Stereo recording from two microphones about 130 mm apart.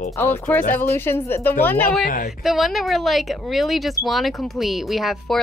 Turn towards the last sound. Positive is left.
turn(degrees=0)  # may be behind; listen again after turning